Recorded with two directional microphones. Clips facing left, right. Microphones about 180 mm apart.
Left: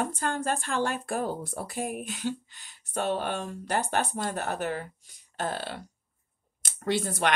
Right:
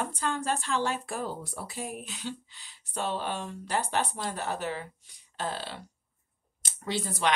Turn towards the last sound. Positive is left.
turn(degrees=50)  # may be behind; listen again after turning